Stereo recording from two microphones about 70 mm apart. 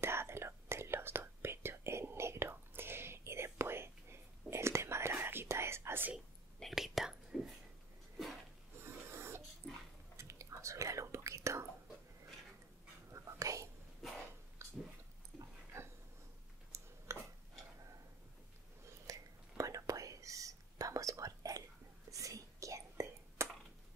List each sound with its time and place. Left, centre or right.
0.0 s whispering: right
6.1 s whispering: centre
8.7 s a sound: right
10.1 s whispering: right
13.1 s whispering: right
14.6 s a sound: right
17.1 s tick-tock: right
19.0 s whispering: right